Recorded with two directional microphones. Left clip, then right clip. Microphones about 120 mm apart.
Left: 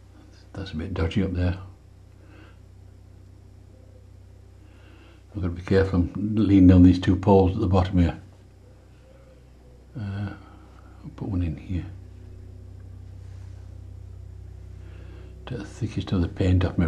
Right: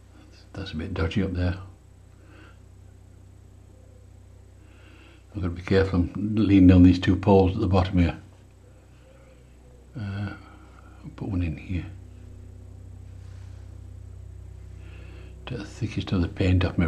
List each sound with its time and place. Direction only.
0.5 s speech: 5° right (ahead or behind)
4.9 s speech: 5° right (ahead or behind)
9.9 s a sound: 5° right (ahead or behind)
14.9 s speech: 10° right (ahead or behind)